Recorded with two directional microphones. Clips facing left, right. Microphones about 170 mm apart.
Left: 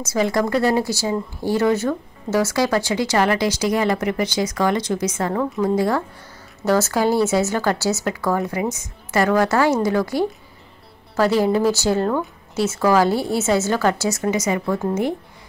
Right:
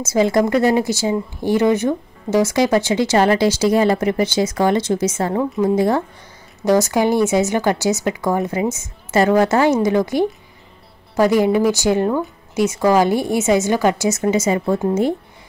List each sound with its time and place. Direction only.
0.0 s a woman's voice: 25° right (ahead or behind)